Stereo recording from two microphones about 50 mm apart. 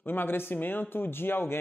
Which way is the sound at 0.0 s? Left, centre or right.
Left.